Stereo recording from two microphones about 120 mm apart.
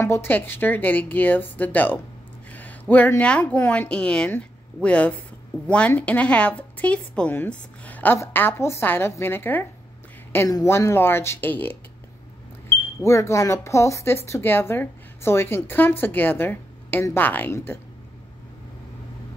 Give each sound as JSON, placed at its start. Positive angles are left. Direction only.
{"t": 0.0, "sound": "speech", "side_deg": 20}
{"t": 12.7, "sound": "speech", "side_deg": 20}